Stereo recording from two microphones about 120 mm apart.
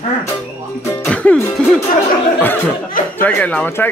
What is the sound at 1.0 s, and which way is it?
Music, 10° left (ahead or behind).